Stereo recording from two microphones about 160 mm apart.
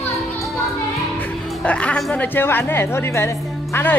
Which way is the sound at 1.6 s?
5° left (ahead or behind).